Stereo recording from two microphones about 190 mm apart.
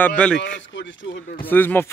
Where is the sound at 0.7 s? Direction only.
75° left (ahead or behind).